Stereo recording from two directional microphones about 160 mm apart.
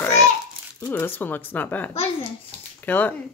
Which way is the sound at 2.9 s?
10° left (ahead or behind).